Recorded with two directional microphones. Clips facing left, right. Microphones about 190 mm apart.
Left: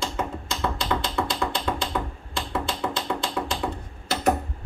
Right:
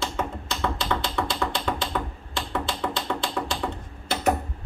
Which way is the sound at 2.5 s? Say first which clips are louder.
Even; 5° left (ahead or behind).